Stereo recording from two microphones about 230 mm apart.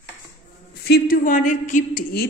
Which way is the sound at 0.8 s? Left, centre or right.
Left.